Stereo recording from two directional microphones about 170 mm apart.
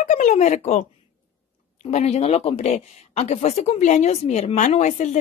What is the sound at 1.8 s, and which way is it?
Speech, 40° left (ahead or behind).